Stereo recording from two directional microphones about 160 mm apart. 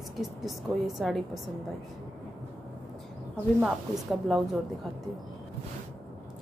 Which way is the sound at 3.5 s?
5° right (ahead or behind).